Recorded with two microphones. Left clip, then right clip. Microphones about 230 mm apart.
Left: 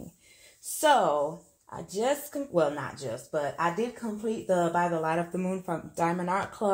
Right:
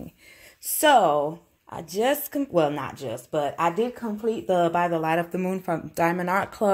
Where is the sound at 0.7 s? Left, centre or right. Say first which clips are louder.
Right 5 dB; right.